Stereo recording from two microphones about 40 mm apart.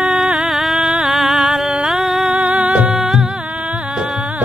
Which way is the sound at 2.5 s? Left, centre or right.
Right.